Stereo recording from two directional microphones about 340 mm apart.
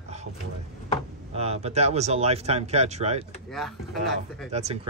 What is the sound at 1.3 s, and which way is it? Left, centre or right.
Speech, centre.